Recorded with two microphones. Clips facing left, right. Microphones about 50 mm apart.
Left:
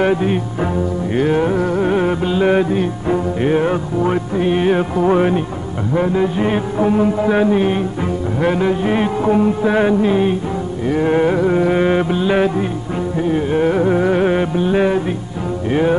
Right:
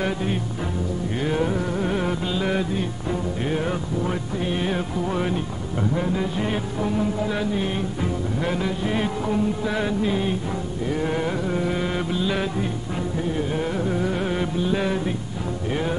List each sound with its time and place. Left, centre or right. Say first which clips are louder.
0.0 s music: left 9 dB; left